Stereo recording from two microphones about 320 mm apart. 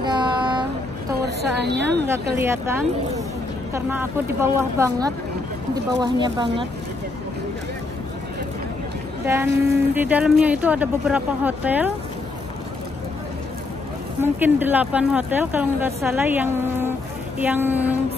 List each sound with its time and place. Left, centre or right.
0.0 s child singing: centre
1.2 s a woman's voice: right
2.0 s speech: centre
9.2 s a woman's voice: centre
14.2 s a woman's voice: centre